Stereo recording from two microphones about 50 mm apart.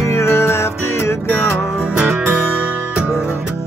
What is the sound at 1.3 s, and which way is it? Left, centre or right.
Music, left.